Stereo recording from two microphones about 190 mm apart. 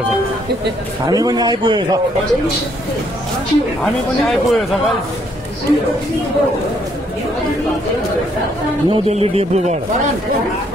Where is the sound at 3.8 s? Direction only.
Centre (ahead or behind).